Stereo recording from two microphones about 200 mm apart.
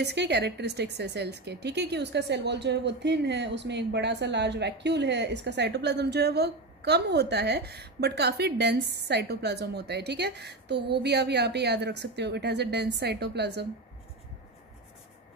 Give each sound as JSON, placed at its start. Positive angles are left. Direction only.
{"t": 0.0, "sound": "a woman's voice", "side_deg": -55}